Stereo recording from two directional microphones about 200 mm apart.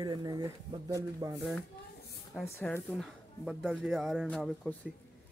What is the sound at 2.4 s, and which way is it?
Speech, centre (ahead or behind).